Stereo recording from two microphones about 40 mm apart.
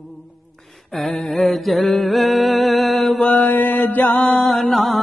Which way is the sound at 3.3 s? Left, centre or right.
Left.